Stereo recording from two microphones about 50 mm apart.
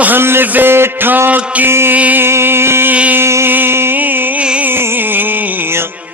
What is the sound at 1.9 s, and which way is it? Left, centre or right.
Mantra, right.